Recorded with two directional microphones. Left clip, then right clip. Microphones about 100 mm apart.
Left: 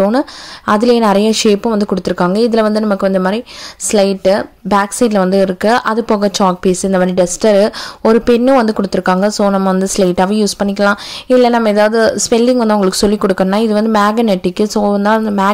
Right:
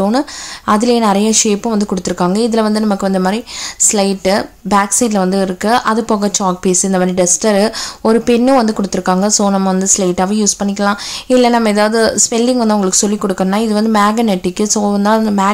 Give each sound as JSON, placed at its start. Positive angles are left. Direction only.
{"t": 0.0, "sound": "a woman's voice", "side_deg": 30}
{"t": 4.7, "sound": "a woman's voice", "side_deg": 35}
{"t": 9.8, "sound": "a woman's voice", "side_deg": 40}
{"t": 12.3, "sound": "a woman's voice", "side_deg": 30}